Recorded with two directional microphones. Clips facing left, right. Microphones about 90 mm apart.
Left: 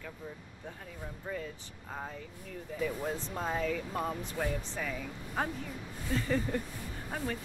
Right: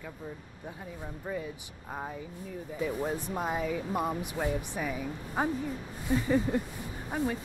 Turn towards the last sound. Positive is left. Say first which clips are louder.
# right 5 dB
turn(degrees=-15)  # may be behind; listen again after turning